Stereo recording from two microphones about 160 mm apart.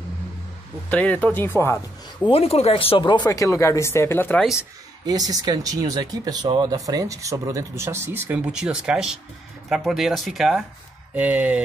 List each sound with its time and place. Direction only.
0.8 s speech: 10° left (ahead or behind)
2.2 s speech: 35° left (ahead or behind); by 4.5 s 10° left (ahead or behind)
5.0 s speech: 25° right (ahead or behind); by 11.6 s 10° right (ahead or behind)